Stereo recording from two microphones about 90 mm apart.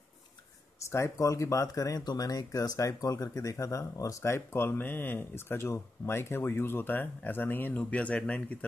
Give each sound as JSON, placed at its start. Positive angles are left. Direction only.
{"t": 0.9, "sound": "speech", "side_deg": 35}